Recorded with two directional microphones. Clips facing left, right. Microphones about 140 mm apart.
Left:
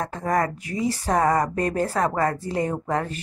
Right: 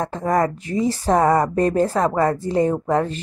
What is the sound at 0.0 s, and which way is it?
Speech, 25° right (ahead or behind).